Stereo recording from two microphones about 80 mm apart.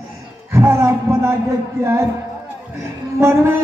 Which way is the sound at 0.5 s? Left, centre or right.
Right.